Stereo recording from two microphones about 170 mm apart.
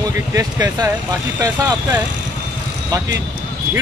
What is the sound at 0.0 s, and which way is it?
Speech, 20° right (ahead or behind).